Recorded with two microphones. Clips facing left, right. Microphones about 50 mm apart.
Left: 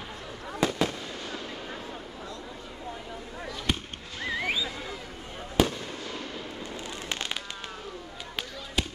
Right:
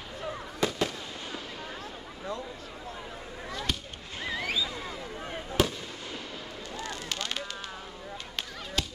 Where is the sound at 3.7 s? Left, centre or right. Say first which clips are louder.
Left 5 dB; centre.